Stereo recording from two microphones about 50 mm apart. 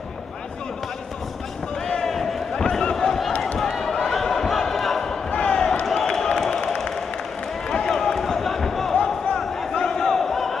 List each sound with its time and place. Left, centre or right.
1.9 s a sound: centre
3.5 s basketball bounce: centre
5.3 s basketball bounce: left
5.9 s basketball bounce: centre
6.3 s a sound: centre
7.7 s basketball bounce: centre
9.8 s battle cry: centre